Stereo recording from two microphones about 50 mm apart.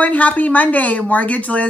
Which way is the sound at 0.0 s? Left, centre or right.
Left.